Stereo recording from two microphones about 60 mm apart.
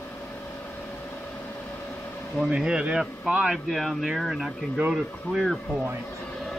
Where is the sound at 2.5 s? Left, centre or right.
Centre.